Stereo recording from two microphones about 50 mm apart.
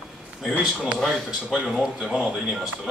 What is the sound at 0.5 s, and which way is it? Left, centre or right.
Speech, right.